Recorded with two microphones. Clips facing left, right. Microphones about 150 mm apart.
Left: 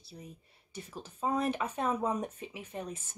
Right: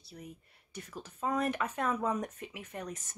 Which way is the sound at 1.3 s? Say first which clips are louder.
Even; 25° left (ahead or behind).